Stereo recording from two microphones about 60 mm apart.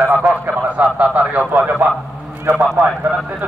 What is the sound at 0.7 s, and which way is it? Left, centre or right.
Speech, right.